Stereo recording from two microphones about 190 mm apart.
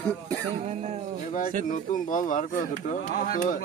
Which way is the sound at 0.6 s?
35° right (ahead or behind).